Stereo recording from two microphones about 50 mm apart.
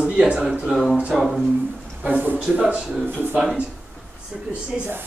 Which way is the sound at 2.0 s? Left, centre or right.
Right.